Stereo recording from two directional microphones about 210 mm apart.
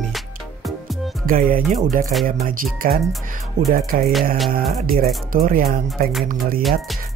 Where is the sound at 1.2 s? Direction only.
40° right (ahead or behind).